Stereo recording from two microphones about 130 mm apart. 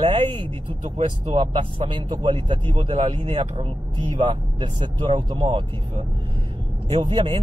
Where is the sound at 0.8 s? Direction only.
55° right (ahead or behind).